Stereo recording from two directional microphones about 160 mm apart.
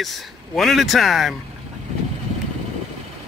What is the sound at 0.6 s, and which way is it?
Speech, centre (ahead or behind).